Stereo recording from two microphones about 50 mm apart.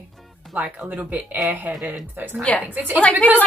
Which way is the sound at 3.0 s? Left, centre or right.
Left.